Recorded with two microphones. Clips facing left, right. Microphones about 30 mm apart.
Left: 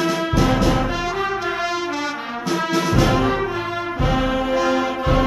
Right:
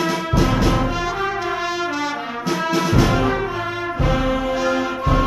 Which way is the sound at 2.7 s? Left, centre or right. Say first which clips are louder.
Right 1 dB; centre.